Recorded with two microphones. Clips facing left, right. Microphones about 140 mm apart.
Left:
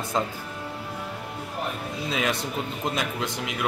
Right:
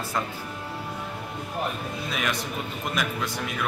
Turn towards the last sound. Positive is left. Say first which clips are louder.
# left 1 dB
turn(degrees=20)  # may be behind; listen again after turning